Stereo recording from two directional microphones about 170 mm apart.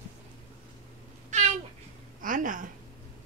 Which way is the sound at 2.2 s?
50° right (ahead or behind).